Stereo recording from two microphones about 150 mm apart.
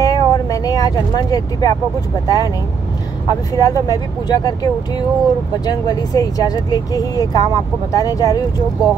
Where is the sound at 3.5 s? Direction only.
25° left (ahead or behind).